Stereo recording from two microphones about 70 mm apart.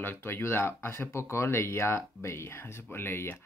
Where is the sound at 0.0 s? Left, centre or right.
Left.